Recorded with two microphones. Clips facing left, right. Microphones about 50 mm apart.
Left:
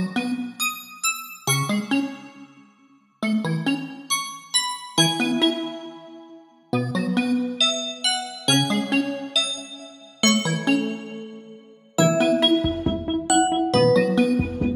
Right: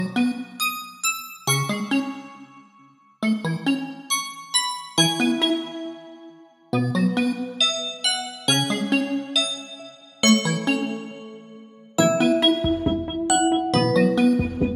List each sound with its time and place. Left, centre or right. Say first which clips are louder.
0.0 s music: right 2 dB; centre
3.2 s music: even; centre
6.7 s music: right 1 dB; centre
9.0 s music: right 2 dB; centre
10.2 s music: right 1 dB; centre
12.0 s music: even; centre